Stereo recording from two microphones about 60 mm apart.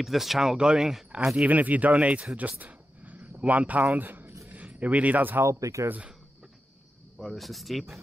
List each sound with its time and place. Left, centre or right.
0.0 s speech: centre
1.4 s speech: right
2.3 s a sound: right
3.9 s speech: right
5.4 s speech: right
7.2 s speech: centre